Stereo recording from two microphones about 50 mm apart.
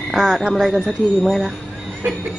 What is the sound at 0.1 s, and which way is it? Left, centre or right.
Speech, centre.